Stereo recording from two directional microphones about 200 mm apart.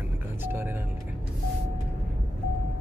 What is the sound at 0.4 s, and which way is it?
Doorbell, 10° right (ahead or behind).